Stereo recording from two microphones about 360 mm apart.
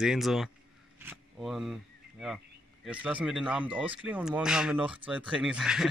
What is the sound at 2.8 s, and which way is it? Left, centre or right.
Speech, centre.